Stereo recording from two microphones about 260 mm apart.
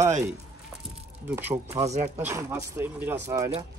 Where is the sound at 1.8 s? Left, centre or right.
Right.